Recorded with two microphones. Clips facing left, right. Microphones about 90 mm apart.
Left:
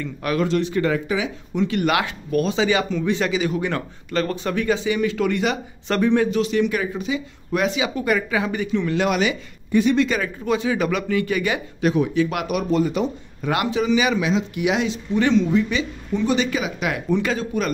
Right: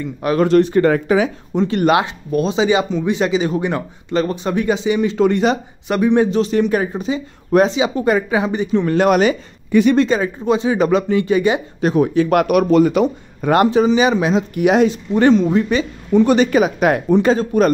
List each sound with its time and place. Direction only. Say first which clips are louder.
0.0 s speech: right 5 dB; 25° right (ahead or behind)
0.4 s speech: right 9 dB; 45° right (ahead or behind); by 5.6 s 30° right (ahead or behind)
5.9 s speech: right 4 dB; 15° right (ahead or behind)
6.1 s speech: right 4 dB; 35° right (ahead or behind)
8.7 s speech: right 7 dB; 45° right (ahead or behind)
9.7 s speech: right 5 dB; 80° right
9.9 s speech: right 5 dB; 30° right (ahead or behind)
11.8 s speech: right 4 dB; 40° right (ahead or behind); by 13.5 s 70° right (ahead or behind)
13.5 s speech: right 7 dB; 40° right (ahead or behind)
14.3 s speech: right 6 dB; 45° right (ahead or behind)